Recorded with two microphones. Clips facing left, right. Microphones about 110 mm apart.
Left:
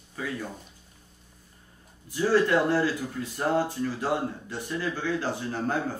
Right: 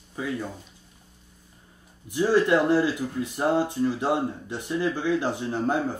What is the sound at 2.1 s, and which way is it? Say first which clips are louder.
Speech: right 2 dB; 15° right (ahead or behind).